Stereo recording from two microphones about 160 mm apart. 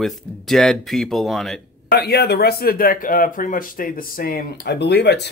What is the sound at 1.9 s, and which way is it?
Speech, 85° left.